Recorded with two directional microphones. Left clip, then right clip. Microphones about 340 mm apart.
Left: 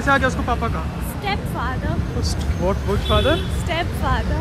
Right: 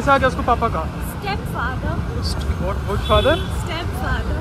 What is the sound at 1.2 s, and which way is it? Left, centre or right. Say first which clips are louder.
Vehicle: even; left.